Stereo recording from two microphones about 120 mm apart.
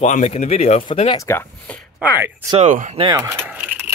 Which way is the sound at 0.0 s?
70° left (ahead or behind).